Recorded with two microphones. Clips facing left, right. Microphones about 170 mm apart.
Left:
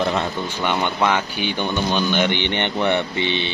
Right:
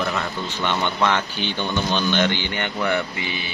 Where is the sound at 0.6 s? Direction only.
10° left (ahead or behind).